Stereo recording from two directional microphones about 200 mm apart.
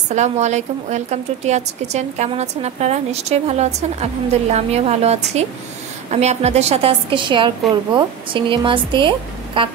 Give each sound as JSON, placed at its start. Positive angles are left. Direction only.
{"t": 0.1, "sound": "a woman's voice", "side_deg": -35}